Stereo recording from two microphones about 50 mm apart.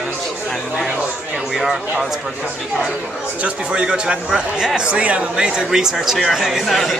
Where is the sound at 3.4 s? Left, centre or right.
Right; by 6.9 s centre.